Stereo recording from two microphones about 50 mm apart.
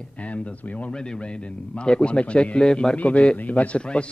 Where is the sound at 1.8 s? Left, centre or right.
Left.